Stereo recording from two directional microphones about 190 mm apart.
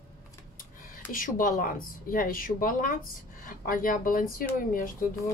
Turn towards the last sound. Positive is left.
turn(degrees=45)  # may be behind; listen again after turning